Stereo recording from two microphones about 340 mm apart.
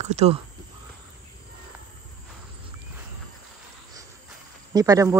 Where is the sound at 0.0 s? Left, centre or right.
Centre.